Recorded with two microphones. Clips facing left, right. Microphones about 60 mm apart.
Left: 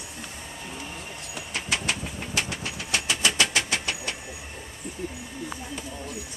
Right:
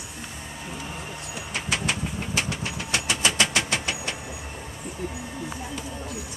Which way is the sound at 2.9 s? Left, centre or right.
Right.